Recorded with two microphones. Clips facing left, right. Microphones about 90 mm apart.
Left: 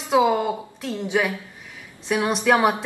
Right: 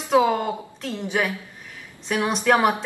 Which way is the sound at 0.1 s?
10° left (ahead or behind).